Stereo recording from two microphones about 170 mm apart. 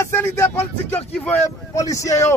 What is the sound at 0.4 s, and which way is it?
Speech, 15° left (ahead or behind).